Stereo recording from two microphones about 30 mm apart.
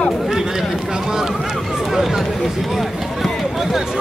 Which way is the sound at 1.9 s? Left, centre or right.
Centre.